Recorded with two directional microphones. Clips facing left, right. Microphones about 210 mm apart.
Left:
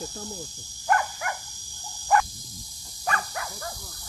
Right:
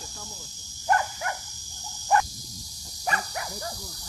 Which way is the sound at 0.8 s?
20° right (ahead or behind).